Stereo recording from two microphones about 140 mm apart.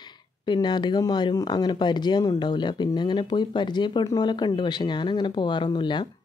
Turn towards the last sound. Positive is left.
turn(degrees=35)  # may be behind; listen again after turning